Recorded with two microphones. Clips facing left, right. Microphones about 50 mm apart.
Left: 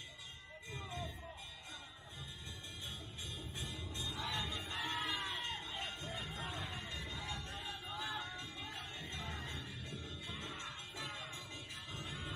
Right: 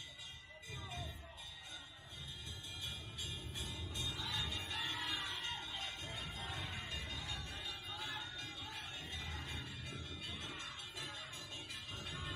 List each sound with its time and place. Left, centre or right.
0.7 s music: left
3.5 s music: left
6.3 s a sound: left
7.1 s music: left